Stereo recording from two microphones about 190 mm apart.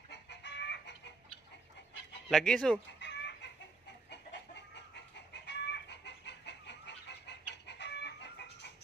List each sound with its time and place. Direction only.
0.1 s chicken: 65° left (ahead or behind)
2.2 s speech: 5° left (ahead or behind)
3.0 s chicken: 65° left (ahead or behind)